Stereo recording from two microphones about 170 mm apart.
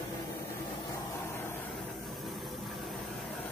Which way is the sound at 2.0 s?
Centre (ahead or behind).